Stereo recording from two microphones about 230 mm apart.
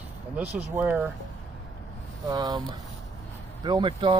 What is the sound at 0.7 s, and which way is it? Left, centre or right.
Speech, centre.